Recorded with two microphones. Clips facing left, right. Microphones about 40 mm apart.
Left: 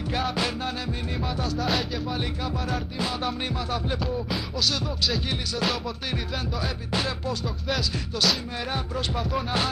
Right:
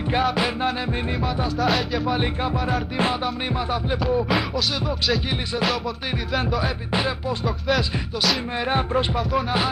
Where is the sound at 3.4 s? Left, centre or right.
Right.